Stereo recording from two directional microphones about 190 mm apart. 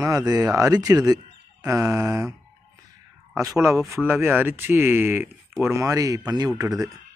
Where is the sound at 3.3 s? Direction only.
15° right (ahead or behind).